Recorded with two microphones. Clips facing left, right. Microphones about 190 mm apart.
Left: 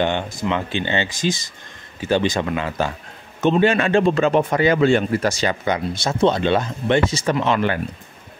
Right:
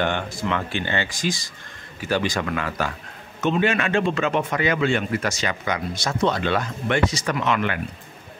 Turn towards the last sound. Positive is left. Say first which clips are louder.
# left 4 dB
turn(degrees=30)  # may be behind; listen again after turning